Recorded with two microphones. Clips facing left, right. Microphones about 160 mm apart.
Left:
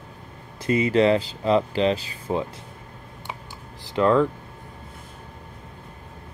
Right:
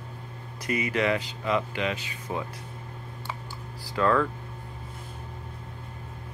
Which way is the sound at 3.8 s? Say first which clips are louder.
Left 5 dB; 20° left (ahead or behind).